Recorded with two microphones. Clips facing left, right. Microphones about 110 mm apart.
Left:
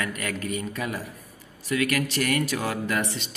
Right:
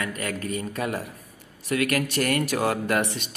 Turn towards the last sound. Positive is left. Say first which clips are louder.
# right 3 dB
turn(degrees=-55)  # may be behind; listen again after turning